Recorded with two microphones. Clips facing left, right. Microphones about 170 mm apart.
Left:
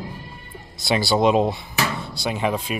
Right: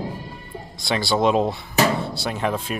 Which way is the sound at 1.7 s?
35° right (ahead or behind).